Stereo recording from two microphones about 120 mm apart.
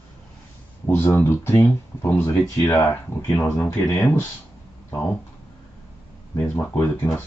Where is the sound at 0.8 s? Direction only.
20° left (ahead or behind).